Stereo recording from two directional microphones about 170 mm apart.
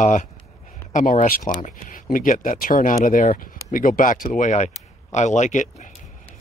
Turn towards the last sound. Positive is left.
turn(degrees=45)  # may be behind; listen again after turning